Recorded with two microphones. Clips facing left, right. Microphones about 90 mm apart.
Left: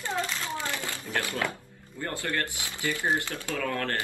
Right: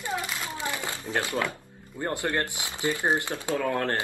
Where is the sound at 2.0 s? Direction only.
25° right (ahead or behind).